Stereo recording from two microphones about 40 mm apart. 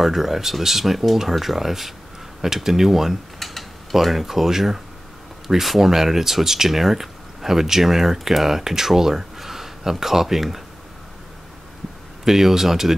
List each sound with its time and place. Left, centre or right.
0.0 s speech: centre
12.3 s speech: centre